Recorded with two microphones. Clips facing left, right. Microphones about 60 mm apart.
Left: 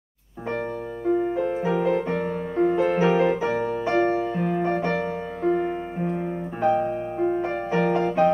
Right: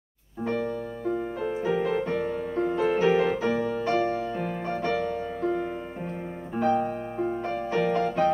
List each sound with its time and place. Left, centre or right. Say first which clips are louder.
0.5 s music: left 1 dB; centre
4.4 s music: left 6 dB; centre
7.2 s music: left 5 dB; left